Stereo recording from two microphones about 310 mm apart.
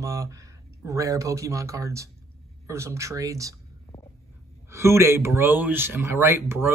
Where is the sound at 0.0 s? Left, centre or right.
Centre.